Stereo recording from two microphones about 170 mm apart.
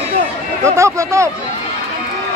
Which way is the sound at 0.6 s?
15° right (ahead or behind).